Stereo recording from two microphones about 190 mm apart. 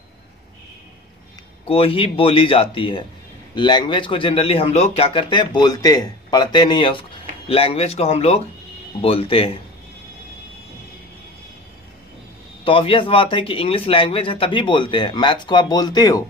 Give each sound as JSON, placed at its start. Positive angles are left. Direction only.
{"t": 1.7, "sound": "speech", "side_deg": 30}
{"t": 12.6, "sound": "speech", "side_deg": 25}